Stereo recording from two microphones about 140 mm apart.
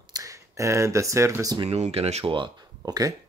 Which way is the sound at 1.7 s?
50° right (ahead or behind).